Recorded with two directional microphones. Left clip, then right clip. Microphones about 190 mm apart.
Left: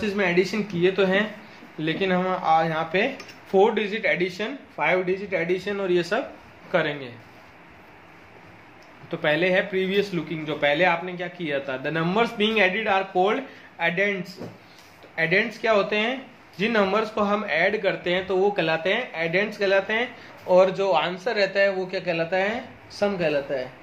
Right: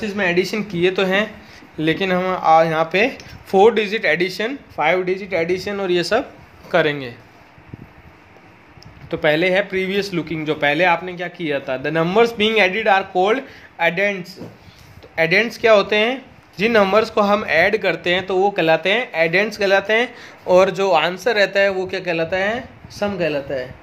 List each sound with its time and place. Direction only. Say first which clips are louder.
0.1 s speech: right 4 dB; 40° right (ahead or behind)
6.7 s speech: right 7 dB; 60° right (ahead or behind)
9.1 s speech: right 5 dB; 50° right (ahead or behind)